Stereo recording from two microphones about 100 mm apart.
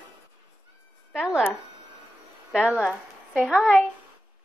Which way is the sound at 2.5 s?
10° right (ahead or behind).